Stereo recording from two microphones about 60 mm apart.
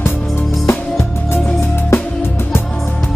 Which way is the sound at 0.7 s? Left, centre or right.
Left.